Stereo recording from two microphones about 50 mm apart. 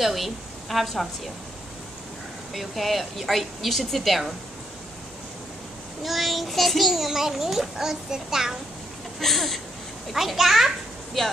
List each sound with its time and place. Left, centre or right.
0.0 s a woman's voice: centre
2.5 s a child's voice: centre
6.0 s a child's voice: centre
9.2 s a child's voice: centre
11.2 s speech: centre